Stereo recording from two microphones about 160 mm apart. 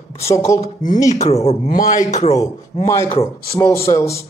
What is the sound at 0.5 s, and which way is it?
Speech, 55° left (ahead or behind).